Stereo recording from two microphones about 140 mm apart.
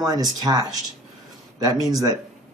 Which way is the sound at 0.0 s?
25° right (ahead or behind).